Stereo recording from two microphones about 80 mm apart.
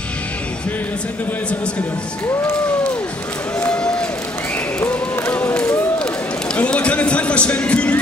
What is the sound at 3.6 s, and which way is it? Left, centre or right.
Run, centre.